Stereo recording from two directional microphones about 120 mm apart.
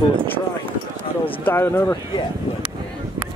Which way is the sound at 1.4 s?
20° left (ahead or behind).